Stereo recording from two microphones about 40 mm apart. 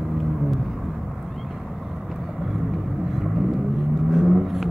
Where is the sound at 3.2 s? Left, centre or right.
Centre.